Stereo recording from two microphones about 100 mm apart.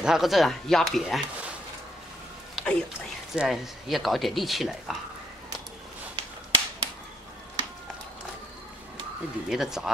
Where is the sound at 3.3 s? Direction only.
5° right (ahead or behind).